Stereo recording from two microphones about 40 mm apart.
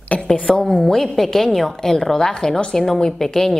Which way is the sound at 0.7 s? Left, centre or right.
Centre.